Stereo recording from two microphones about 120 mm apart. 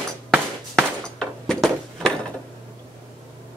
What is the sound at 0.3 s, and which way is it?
Music, centre (ahead or behind).